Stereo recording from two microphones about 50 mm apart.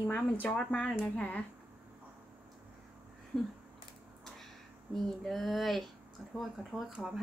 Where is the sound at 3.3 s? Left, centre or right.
Centre.